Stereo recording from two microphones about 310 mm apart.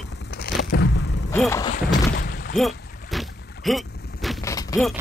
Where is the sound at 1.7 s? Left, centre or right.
Left.